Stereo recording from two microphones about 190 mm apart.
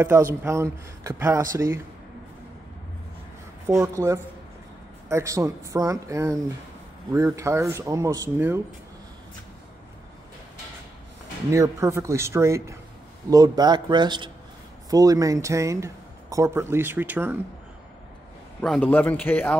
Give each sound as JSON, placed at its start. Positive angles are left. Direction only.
{"t": 0.0, "sound": "speech", "side_deg": -15}
{"t": 3.6, "sound": "speech", "side_deg": -15}
{"t": 11.5, "sound": "a man's voice", "side_deg": -15}
{"t": 18.6, "sound": "a man's voice", "side_deg": 5}